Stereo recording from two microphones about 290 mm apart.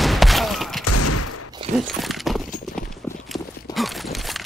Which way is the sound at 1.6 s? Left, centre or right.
Centre.